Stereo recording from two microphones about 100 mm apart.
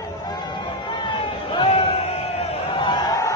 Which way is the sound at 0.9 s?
60° left (ahead or behind).